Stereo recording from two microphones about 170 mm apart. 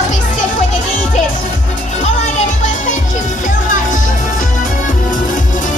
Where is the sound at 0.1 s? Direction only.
45° left (ahead or behind).